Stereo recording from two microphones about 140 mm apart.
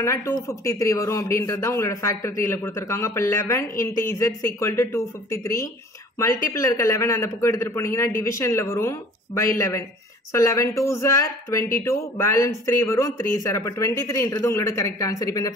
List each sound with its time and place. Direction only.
0.0 s speech: 20° left (ahead or behind)